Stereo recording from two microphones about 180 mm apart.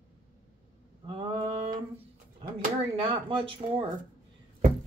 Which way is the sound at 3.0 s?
30° right (ahead or behind).